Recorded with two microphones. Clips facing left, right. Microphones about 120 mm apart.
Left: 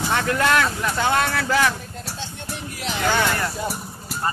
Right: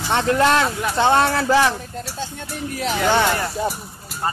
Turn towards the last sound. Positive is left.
turn(degrees=-25)  # may be behind; listen again after turning